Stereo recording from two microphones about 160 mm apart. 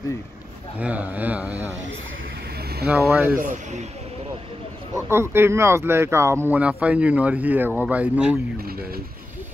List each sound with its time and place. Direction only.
0.7 s speech: 10° right (ahead or behind)
2.9 s speech: 15° right (ahead or behind)
3.3 s speech: 50° right (ahead or behind)
4.9 s speech: 15° right (ahead or behind)